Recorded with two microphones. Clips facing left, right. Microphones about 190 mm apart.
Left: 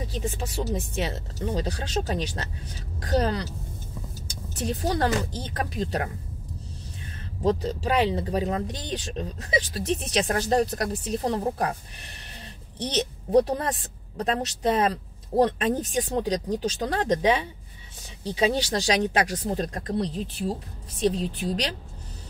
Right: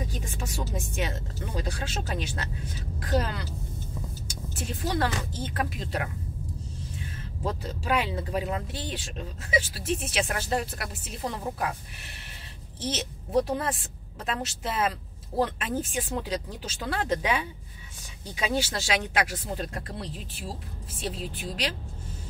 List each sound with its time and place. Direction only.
0.9 s a woman's voice: 35° left (ahead or behind)
4.6 s a woman's voice: 35° left (ahead or behind)
7.4 s a woman's voice: 35° left (ahead or behind)
12.9 s a woman's voice: 40° left (ahead or behind)